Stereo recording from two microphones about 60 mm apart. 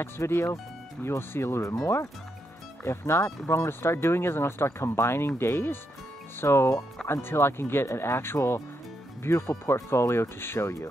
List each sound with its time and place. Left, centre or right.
0.0 s speech: left
2.8 s speech: left